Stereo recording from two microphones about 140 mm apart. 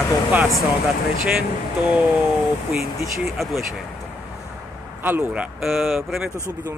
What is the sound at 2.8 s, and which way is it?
Speech, centre (ahead or behind).